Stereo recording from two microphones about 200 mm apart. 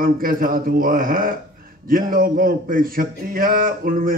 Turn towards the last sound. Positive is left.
turn(degrees=-45)  # may be behind; listen again after turning